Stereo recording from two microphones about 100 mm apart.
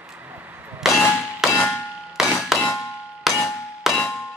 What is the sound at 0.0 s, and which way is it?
Clang, 10° right (ahead or behind).